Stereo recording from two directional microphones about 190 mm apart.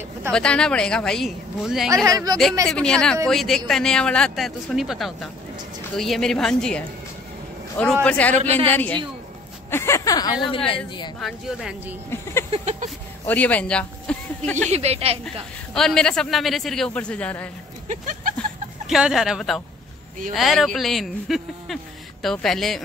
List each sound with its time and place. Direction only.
0.3 s speech: 5° left (ahead or behind)
2.0 s speech: 20° right (ahead or behind)
2.7 s a man's voice: 5° left (ahead or behind)
8.4 s speech: 35° right (ahead or behind)
8.7 s a man's voice: 10° left (ahead or behind); by 10.8 s 25° left (ahead or behind)
11.1 s speech: centre (ahead or behind)
12.5 s speech: 35° right (ahead or behind)
13.3 s speech: 10° left (ahead or behind)
14.7 s speech: 35° right (ahead or behind)
15.7 s speech: centre (ahead or behind)
17.8 s a sound: 45° right (ahead or behind)
18.9 s speech: centre (ahead or behind)